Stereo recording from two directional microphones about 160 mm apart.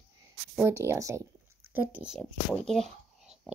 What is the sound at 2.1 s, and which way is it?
Speech, 5° left (ahead or behind).